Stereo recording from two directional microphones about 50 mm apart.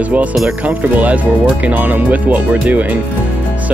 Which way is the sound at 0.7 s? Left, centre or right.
Right.